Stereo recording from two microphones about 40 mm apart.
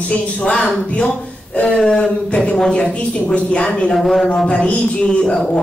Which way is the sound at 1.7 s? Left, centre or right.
Centre.